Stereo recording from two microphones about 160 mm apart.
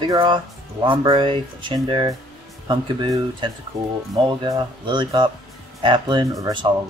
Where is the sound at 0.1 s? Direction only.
25° right (ahead or behind).